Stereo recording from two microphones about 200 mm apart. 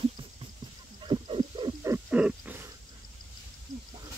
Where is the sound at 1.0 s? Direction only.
25° right (ahead or behind); by 2.7 s 10° right (ahead or behind).